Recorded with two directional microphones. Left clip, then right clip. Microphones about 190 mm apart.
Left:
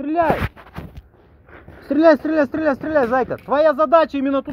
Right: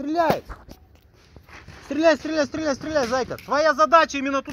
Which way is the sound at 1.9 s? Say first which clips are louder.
Left 6 dB; 35° left (ahead or behind).